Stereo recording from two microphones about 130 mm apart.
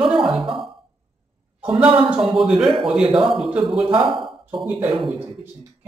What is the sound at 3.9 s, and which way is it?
A man's voice, 40° right (ahead or behind).